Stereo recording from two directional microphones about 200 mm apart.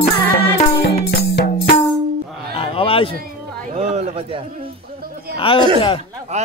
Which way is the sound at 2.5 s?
25° left (ahead or behind).